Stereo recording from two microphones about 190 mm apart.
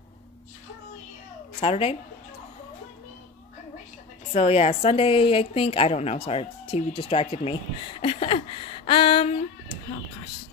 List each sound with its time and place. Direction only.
1.6 s a woman's voice: 30° left (ahead or behind)
4.3 s speech: 35° left (ahead or behind)